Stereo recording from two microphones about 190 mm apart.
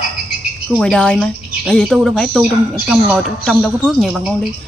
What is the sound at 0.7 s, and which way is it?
Speech, 5° left (ahead or behind).